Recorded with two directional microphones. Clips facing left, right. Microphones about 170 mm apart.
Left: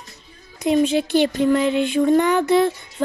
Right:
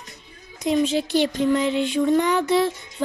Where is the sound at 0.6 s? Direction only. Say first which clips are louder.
Left 3 dB; 55° left (ahead or behind).